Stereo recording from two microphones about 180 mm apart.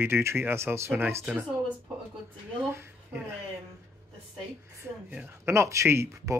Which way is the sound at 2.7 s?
15° right (ahead or behind).